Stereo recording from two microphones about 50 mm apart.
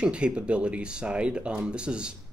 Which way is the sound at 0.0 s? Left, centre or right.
Right.